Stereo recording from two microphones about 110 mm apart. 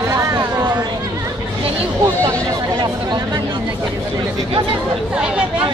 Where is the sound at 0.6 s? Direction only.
40° right (ahead or behind).